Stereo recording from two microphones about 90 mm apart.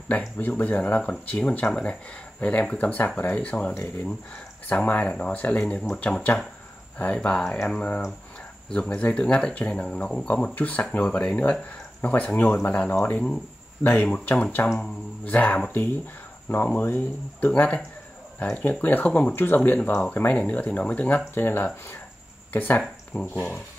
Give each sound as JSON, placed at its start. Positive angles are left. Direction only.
{"t": 0.4, "sound": "speech", "side_deg": 20}
{"t": 17.5, "sound": "speech", "side_deg": 10}
{"t": 22.8, "sound": "speech", "side_deg": 10}